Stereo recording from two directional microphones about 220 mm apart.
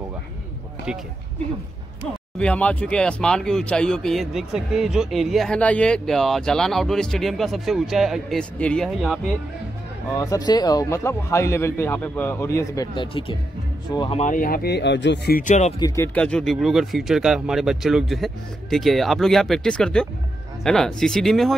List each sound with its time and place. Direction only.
2.3 s speech: 5° left (ahead or behind)
10.1 s a man's voice: 15° left (ahead or behind)
14.2 s speech: 40° left (ahead or behind)
15.8 s speech: 15° left (ahead or behind)